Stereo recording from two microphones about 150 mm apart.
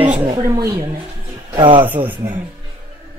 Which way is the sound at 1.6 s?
30° right (ahead or behind).